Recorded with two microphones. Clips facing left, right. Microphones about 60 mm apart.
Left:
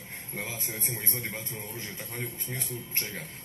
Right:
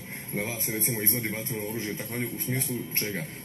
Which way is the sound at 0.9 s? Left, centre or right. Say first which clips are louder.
Right 5 dB; centre.